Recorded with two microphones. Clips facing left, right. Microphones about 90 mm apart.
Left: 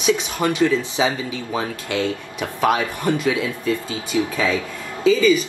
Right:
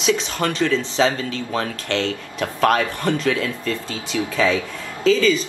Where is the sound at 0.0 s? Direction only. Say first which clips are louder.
Left 1 dB; 10° left (ahead or behind).